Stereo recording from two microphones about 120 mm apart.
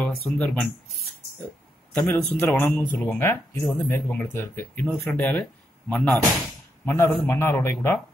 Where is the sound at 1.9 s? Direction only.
10° left (ahead or behind).